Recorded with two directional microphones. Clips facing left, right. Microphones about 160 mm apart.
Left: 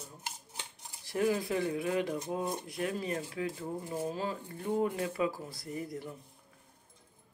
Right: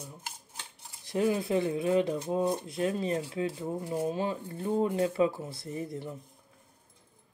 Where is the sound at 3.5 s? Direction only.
20° right (ahead or behind).